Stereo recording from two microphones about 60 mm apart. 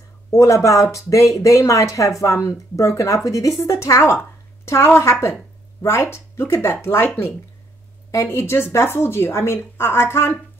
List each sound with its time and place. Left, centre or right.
0.3 s a woman's voice: left
8.1 s a woman's voice: left